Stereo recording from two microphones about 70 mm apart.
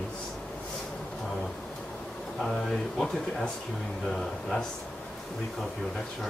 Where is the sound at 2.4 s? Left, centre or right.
Centre.